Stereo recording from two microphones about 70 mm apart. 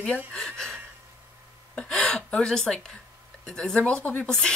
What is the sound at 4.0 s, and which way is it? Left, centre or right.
Speech, left.